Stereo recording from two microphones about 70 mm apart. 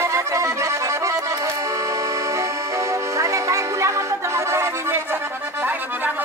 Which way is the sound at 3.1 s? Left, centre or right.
Right.